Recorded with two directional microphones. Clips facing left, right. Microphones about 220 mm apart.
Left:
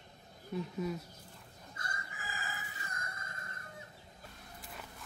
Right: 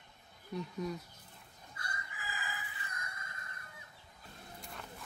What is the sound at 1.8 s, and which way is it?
Chicken, 45° left (ahead or behind).